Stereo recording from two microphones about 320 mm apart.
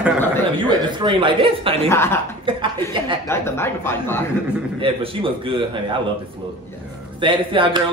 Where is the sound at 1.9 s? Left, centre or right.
Centre.